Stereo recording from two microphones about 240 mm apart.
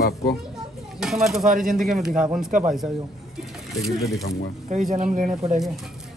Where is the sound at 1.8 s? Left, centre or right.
Centre.